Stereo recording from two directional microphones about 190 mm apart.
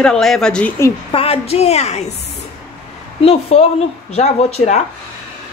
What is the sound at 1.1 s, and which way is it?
Speech, 30° left (ahead or behind).